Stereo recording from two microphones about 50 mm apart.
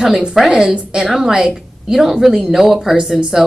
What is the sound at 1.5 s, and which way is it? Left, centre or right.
A woman's voice, centre.